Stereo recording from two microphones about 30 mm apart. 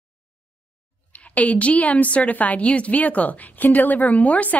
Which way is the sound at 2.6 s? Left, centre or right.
Left.